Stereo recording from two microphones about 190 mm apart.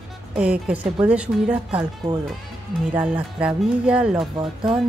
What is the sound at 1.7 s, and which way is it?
Speech, 25° right (ahead or behind).